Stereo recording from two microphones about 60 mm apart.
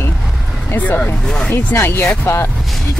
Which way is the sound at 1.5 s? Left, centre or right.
Left.